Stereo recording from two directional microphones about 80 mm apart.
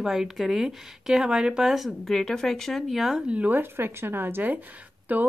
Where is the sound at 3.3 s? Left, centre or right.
Right.